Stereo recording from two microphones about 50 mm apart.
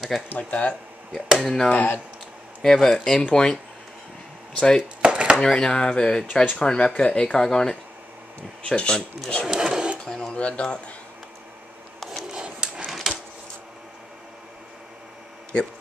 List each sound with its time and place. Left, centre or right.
0.3 s speech: left
1.4 s speech: centre
1.7 s speech: left
2.6 s speech: centre
4.6 s speech: centre
5.0 s a sound: right
5.4 s speech: centre
9.5 s sewing machine: centre
10.0 s a sound: centre
12.3 s dog: centre
13.0 s a sound: centre